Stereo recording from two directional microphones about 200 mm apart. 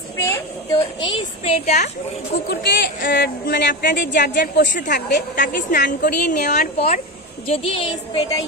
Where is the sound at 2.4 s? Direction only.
55° left (ahead or behind).